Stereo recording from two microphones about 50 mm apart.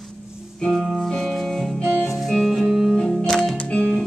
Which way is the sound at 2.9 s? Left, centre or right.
Centre.